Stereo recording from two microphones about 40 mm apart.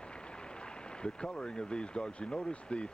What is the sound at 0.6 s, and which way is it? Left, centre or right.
Speech, left.